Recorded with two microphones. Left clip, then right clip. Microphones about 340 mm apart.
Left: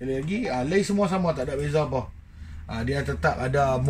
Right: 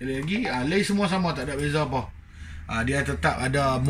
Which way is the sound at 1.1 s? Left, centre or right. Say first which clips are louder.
Left 1 dB; left.